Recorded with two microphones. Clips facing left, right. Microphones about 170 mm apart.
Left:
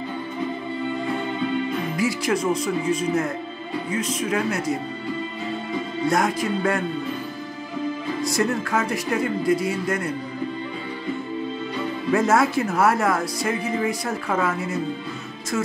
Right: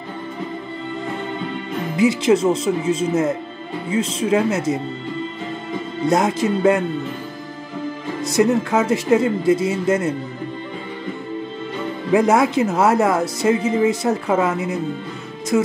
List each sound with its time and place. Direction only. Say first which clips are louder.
2.0 s speech: right 9 dB; 25° right (ahead or behind)
6.0 s speech: right 5 dB; 20° right (ahead or behind)
8.2 s speech: right 8 dB; 20° right (ahead or behind)
12.1 s speech: right 4 dB; 15° right (ahead or behind)